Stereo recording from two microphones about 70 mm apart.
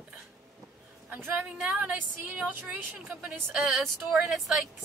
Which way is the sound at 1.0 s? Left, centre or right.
Right.